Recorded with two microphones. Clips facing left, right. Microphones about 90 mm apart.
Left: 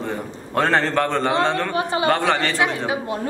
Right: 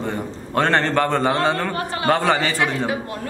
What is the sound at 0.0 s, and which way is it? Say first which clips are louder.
A man's voice: right 1 dB; centre (ahead or behind).